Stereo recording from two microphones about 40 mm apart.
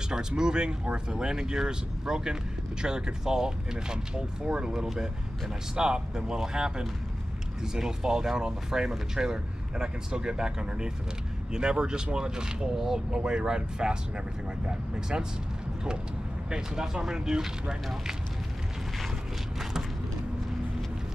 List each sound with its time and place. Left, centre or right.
0.4 s speech: right
16.4 s speech: centre